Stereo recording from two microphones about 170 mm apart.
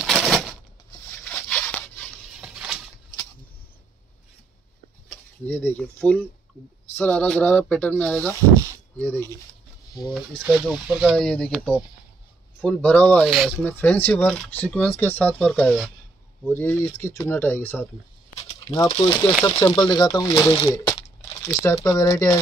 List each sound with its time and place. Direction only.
0.0 s a sound: centre (ahead or behind)
2.0 s patter: centre (ahead or behind)
5.1 s speech: 15° left (ahead or behind)
11.0 s speech: centre (ahead or behind)
16.4 s speech: 10° left (ahead or behind)
18.7 s speech: 20° left (ahead or behind)
20.6 s crumpling: 20° left (ahead or behind)
21.8 s speech: 20° left (ahead or behind)